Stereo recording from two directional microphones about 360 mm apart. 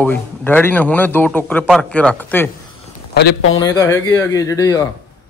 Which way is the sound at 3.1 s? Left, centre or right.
Left.